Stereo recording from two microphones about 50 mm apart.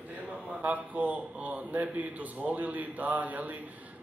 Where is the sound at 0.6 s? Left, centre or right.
Right.